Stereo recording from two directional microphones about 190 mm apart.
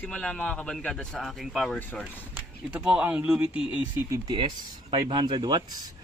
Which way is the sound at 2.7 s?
5° right (ahead or behind).